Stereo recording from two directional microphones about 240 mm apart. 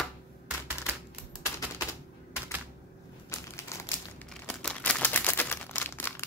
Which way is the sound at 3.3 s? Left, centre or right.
Centre.